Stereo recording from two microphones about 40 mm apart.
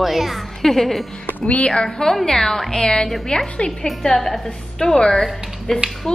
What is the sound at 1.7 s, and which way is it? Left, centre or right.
A woman's voice, centre.